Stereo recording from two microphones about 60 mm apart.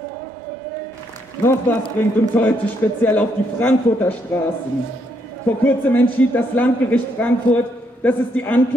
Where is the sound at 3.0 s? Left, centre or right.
Left.